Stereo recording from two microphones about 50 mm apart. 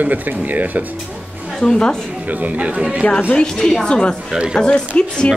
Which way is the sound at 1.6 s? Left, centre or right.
Centre.